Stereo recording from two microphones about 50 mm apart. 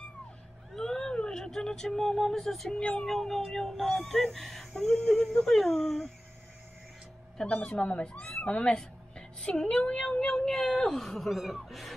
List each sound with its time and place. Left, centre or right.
0.7 s speech: centre
7.5 s speech: left; by 11.9 s centre